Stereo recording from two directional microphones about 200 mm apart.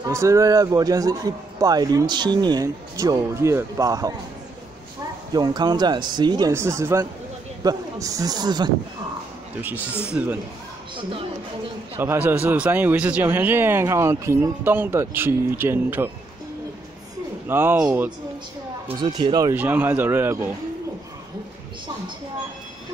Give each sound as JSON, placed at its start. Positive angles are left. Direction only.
{"t": 0.1, "sound": "speech", "side_deg": -15}
{"t": 5.3, "sound": "speech", "side_deg": -20}
{"t": 10.1, "sound": "speech", "side_deg": -10}
{"t": 12.0, "sound": "speech", "side_deg": -10}
{"t": 17.5, "sound": "speech", "side_deg": -10}
{"t": 18.9, "sound": "speech", "side_deg": -20}